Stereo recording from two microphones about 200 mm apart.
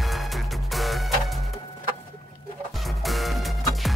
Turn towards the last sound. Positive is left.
turn(degrees=0)  # may be behind; listen again after turning